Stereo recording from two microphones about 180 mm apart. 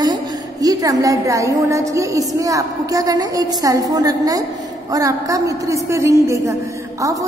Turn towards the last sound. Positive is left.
turn(degrees=-15)  # may be behind; listen again after turning